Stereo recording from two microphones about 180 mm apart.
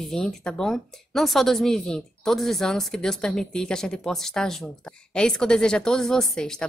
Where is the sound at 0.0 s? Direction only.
Centre (ahead or behind).